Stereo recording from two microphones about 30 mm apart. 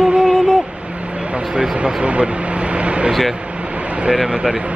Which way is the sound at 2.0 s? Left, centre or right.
Right.